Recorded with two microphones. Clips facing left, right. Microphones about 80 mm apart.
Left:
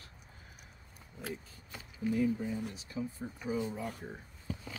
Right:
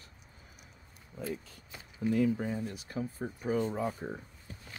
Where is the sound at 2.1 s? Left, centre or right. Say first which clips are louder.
Right 2 dB; right.